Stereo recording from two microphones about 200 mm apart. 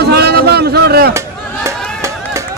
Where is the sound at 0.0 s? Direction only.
55° right (ahead or behind).